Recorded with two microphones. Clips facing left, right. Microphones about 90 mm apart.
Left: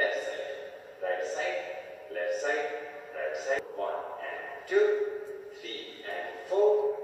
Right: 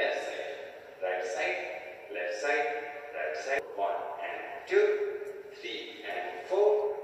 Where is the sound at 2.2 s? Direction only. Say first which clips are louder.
Even; 60° right (ahead or behind).